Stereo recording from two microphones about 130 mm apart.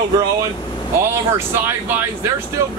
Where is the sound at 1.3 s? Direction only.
20° right (ahead or behind).